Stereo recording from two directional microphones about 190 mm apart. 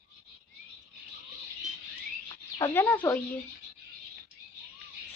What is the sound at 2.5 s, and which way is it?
Speech, 15° left (ahead or behind).